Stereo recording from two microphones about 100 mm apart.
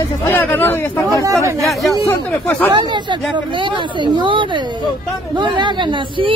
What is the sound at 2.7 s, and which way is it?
Speech, 50° right (ahead or behind).